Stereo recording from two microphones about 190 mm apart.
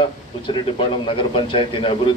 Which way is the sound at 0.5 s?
25° left (ahead or behind).